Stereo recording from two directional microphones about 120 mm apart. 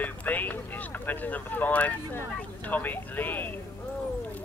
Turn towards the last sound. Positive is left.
turn(degrees=15)  # may be behind; listen again after turning